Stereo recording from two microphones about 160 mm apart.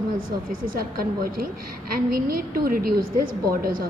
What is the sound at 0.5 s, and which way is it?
A woman's voice, 65° right (ahead or behind).